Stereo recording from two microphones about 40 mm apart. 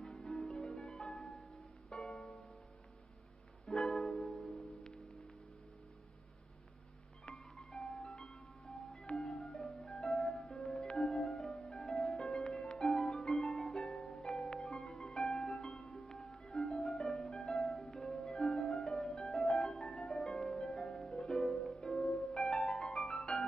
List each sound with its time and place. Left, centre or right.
0.1 s music: centre
3.7 s music: centre
7.2 s music: left
17.1 s harp: left
17.7 s music: centre
18.2 s harp: centre
19.4 s music: centre
19.7 s music: centre
20.7 s harp: centre